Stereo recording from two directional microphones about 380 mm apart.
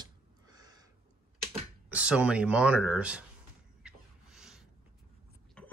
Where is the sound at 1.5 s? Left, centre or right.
Centre.